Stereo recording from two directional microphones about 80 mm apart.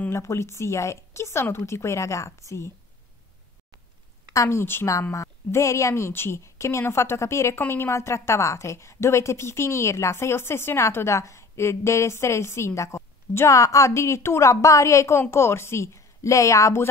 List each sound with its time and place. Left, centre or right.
0.1 s a woman's voice: left
4.3 s a woman's voice: left